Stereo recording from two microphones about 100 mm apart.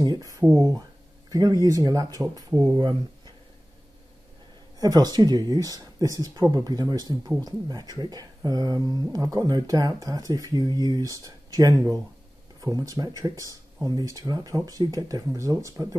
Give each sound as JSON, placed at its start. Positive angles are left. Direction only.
{"t": 0.0, "sound": "speech", "side_deg": -40}
{"t": 4.7, "sound": "speech", "side_deg": -40}